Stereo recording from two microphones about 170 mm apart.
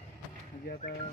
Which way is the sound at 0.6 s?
55° left (ahead or behind).